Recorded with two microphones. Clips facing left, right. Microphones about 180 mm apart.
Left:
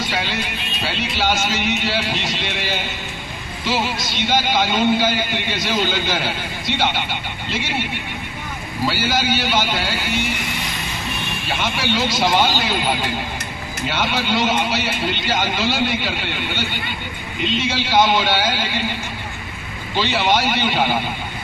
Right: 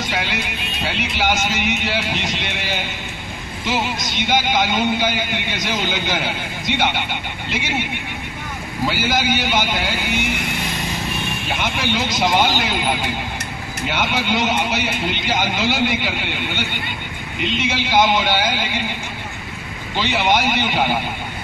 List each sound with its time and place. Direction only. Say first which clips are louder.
1.1 s music: even; 15° right (ahead or behind)
8.8 s music: even; 15° right (ahead or behind)
11.8 s speech: left 1 dB; 20° right (ahead or behind)
13.8 s music: even; 15° right (ahead or behind)
17.5 s music: even; 15° right (ahead or behind)
20.0 s music: even; 15° right (ahead or behind)